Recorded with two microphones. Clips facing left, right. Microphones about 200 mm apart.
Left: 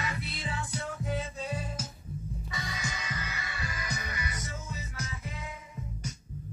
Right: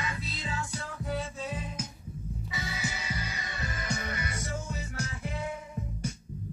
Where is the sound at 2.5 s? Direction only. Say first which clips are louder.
Right 2 dB; 5° right (ahead or behind); by 4.5 s 30° right (ahead or behind).